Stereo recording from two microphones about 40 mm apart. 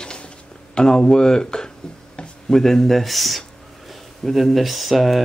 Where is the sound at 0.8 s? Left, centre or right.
Centre.